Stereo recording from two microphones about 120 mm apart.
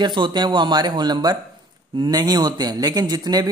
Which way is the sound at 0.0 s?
40° right (ahead or behind).